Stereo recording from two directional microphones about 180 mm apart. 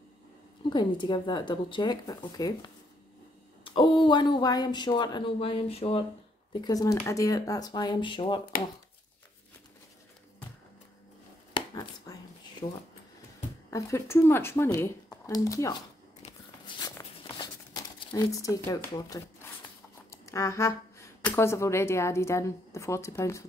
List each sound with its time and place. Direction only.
0.7 s speech: 25° left (ahead or behind)
6.5 s speech: 20° left (ahead or behind)
11.5 s a sound: 25° left (ahead or behind)
13.7 s speech: 15° left (ahead or behind)
16.2 s biting: 25° left (ahead or behind)
16.9 s a sound: 20° left (ahead or behind)
18.1 s speech: 20° left (ahead or behind)
20.2 s speech: 15° left (ahead or behind)